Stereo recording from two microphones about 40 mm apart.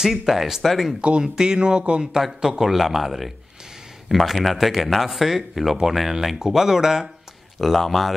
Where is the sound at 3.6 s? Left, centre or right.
Centre.